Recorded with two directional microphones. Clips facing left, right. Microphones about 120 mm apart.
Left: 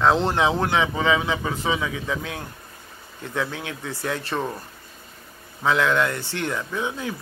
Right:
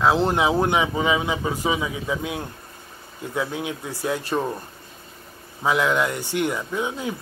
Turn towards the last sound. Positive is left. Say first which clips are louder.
# right 1 dB
turn(degrees=-20)  # may be behind; listen again after turning